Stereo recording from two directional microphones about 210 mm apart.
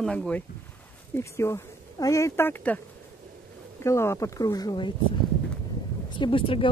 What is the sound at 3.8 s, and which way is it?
Speech, 15° left (ahead or behind).